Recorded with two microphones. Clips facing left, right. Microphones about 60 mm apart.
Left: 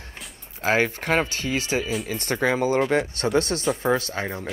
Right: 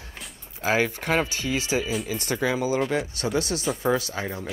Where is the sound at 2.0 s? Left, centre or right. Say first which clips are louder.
Left 2 dB; left.